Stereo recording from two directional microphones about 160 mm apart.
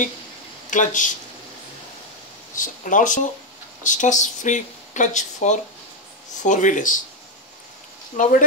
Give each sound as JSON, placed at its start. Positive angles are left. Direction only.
{"t": 0.7, "sound": "speech", "side_deg": 50}
{"t": 2.5, "sound": "speech", "side_deg": 55}
{"t": 8.2, "sound": "speech", "side_deg": 55}